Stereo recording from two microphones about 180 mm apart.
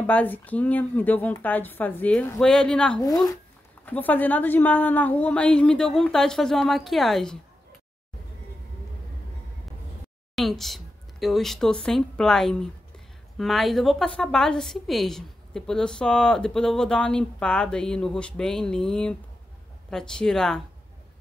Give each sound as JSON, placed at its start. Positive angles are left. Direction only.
{"t": 0.0, "sound": "a woman's voice", "side_deg": 10}
{"t": 10.3, "sound": "a woman's voice", "side_deg": 0}